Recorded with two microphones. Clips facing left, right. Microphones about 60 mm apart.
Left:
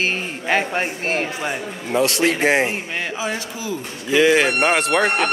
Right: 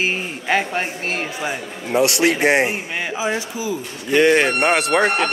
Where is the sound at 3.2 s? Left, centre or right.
Centre.